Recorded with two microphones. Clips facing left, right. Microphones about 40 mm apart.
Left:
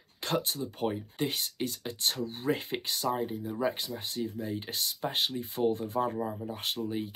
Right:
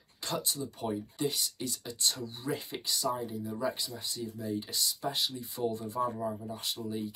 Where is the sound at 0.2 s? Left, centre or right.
Left.